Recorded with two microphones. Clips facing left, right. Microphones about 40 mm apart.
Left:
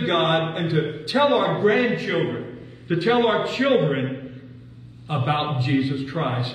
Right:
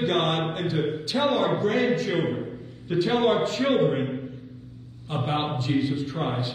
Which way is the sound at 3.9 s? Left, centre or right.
Left.